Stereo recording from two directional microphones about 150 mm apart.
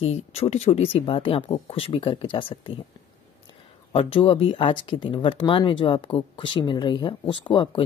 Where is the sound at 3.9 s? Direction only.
40° left (ahead or behind).